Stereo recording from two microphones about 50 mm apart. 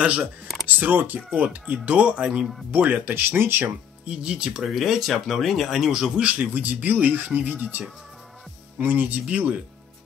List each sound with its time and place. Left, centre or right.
0.0 s speech: right
0.7 s speech: right
2.7 s speech: right
4.0 s speech: centre
4.6 s a man's voice: centre
6.2 s speech: right